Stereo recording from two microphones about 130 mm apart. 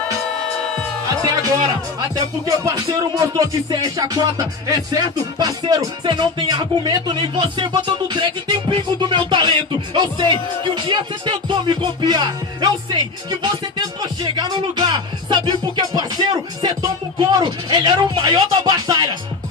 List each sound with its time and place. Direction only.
1.4 s speech: 30° right (ahead or behind)